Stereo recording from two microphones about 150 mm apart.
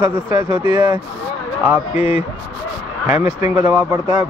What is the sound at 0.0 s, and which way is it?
Speech, 20° right (ahead or behind).